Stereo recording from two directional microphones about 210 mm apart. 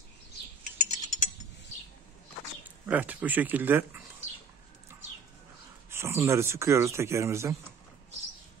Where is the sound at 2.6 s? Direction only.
10° right (ahead or behind).